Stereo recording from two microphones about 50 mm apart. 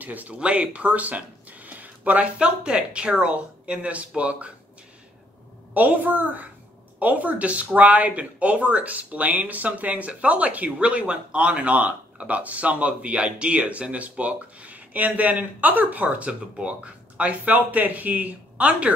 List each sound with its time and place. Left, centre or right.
0.0 s speech: right
0.3 s speech: right
5.8 s a woman's voice: right